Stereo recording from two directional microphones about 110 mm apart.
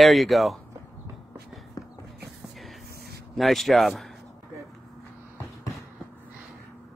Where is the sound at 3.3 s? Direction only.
Centre (ahead or behind).